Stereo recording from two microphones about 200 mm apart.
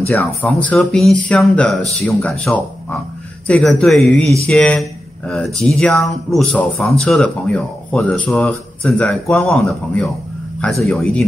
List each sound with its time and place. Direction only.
0.2 s speech: centre (ahead or behind)